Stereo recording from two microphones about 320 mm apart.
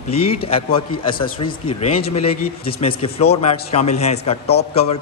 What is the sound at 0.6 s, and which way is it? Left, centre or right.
A man's voice, centre.